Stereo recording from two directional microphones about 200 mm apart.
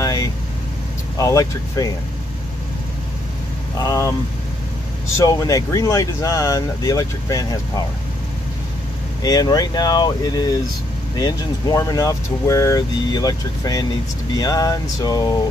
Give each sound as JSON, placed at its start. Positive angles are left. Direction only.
{"t": 0.0, "sound": "vehicle", "side_deg": 15}
{"t": 1.1, "sound": "speech", "side_deg": 15}
{"t": 3.8, "sound": "speech", "side_deg": 15}
{"t": 5.1, "sound": "speech", "side_deg": 15}
{"t": 9.2, "sound": "speech", "side_deg": 20}